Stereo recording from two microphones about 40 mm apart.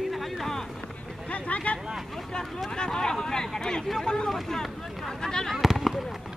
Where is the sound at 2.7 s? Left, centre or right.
Centre.